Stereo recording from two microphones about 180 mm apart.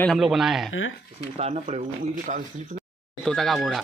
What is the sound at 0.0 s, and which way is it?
Speech, centre (ahead or behind).